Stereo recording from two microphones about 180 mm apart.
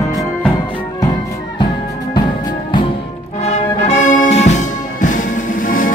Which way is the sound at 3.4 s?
40° left (ahead or behind).